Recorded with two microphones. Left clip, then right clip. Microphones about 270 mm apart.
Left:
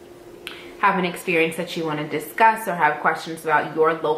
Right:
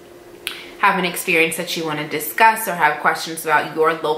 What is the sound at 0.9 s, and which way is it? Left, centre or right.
A woman's voice, centre.